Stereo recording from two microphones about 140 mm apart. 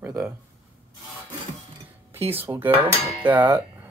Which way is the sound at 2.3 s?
15° right (ahead or behind).